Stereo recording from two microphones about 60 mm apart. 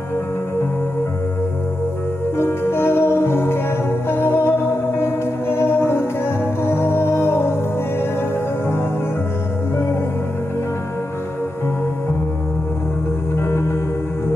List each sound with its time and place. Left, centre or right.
2.3 s music: left
13.4 s music: left